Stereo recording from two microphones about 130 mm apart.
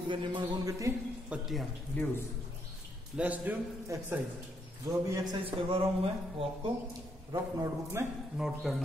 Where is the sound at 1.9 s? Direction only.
10° left (ahead or behind).